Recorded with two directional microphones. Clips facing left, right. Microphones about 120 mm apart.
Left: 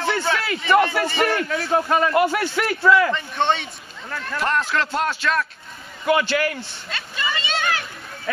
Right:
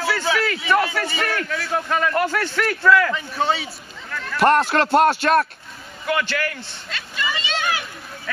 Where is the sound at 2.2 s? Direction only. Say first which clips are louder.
Left 2 dB; 15° left (ahead or behind).